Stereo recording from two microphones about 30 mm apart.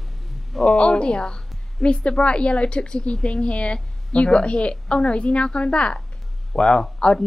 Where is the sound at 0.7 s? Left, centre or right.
Left.